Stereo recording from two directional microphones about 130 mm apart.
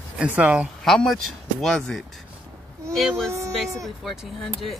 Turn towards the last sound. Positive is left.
turn(degrees=0)  # may be behind; listen again after turning